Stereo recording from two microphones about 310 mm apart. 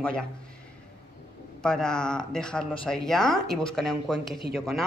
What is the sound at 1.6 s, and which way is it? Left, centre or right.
Speech, centre.